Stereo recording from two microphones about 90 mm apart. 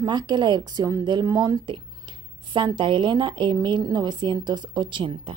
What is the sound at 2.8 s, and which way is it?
Speech, 65° right (ahead or behind).